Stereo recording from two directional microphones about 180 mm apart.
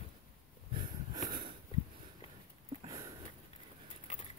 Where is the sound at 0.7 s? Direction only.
30° right (ahead or behind).